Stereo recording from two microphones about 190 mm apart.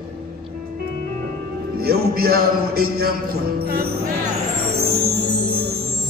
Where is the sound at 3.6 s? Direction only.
55° right (ahead or behind).